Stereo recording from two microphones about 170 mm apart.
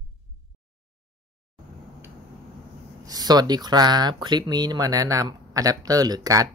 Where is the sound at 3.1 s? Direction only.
25° right (ahead or behind).